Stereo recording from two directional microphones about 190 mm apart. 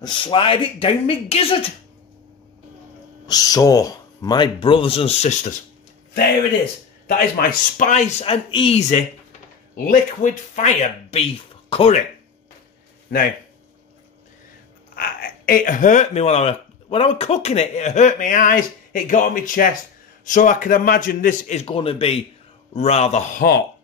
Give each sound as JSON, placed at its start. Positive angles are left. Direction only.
{"t": 0.0, "sound": "speech", "side_deg": 25}
{"t": 3.3, "sound": "speech", "side_deg": 20}
{"t": 7.3, "sound": "speech", "side_deg": 40}
{"t": 15.0, "sound": "speech", "side_deg": 50}